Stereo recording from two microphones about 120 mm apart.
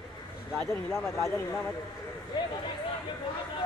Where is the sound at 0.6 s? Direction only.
20° left (ahead or behind).